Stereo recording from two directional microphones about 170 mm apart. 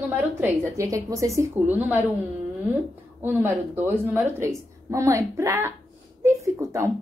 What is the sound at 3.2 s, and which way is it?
Speech, 10° right (ahead or behind).